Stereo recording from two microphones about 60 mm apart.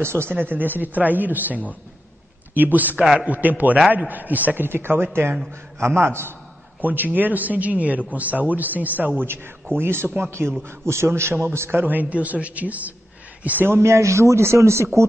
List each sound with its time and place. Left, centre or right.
0.0 s a man's voice: right
6.8 s speech: right
9.2 s a man's voice: right
11.8 s speech: right
13.7 s a man's voice: right